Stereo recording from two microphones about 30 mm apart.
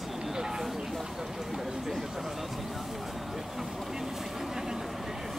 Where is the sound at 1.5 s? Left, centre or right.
Centre.